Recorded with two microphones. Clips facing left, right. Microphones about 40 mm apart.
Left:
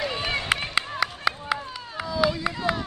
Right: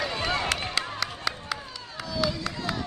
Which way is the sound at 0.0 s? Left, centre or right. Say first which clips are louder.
Left 1 dB; left.